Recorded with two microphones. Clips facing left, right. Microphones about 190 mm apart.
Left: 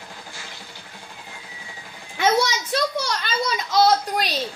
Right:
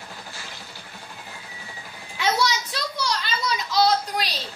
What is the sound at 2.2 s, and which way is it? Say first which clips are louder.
A child's voice: left 3 dB; 50° left (ahead or behind).